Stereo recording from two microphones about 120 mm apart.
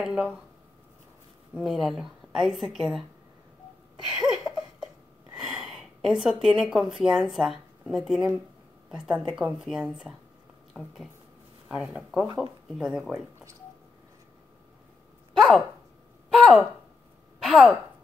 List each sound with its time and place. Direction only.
0.0 s speech: 5° right (ahead or behind)
1.5 s a woman's voice: centre (ahead or behind)
4.0 s a sound: 5° right (ahead or behind)
5.3 s a woman's voice: 5° right (ahead or behind)
11.7 s a woman's voice: 10° right (ahead or behind)
15.3 s a sound: centre (ahead or behind)
17.4 s a woman's voice: centre (ahead or behind)